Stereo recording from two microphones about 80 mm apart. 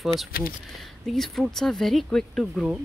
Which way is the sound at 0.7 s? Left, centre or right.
Centre.